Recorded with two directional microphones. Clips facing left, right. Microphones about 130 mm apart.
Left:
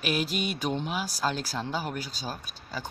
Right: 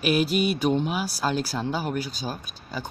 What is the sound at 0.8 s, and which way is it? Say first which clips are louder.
Speech: right 3 dB; 10° right (ahead or behind).